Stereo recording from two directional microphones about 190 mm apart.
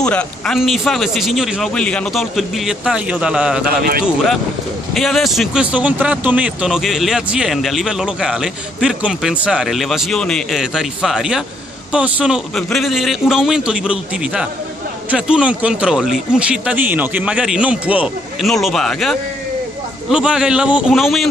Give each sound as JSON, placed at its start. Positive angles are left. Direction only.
{"t": 0.0, "sound": "speech", "side_deg": 5}
{"t": 4.9, "sound": "speech", "side_deg": 0}